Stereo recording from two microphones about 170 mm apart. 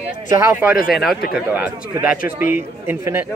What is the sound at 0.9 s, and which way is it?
Speech, centre (ahead or behind).